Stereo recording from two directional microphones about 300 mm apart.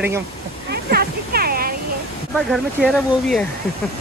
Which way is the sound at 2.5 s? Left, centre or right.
Centre.